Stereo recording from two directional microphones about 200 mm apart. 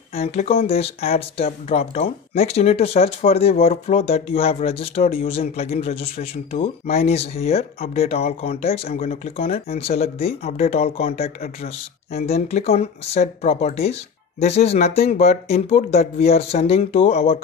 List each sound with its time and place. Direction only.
0.1 s speech: 30° left (ahead or behind)